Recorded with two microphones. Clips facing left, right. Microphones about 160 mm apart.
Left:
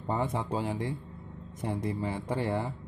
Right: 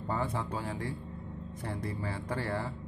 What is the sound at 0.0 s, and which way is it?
Speech, 20° left (ahead or behind).